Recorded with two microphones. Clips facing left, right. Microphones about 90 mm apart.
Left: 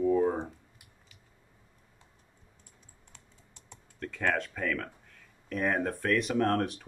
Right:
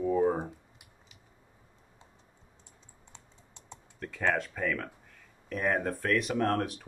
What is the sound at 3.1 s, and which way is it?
Typing, 25° right (ahead or behind).